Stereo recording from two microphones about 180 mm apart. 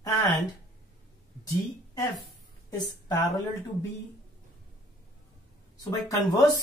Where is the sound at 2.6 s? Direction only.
20° left (ahead or behind).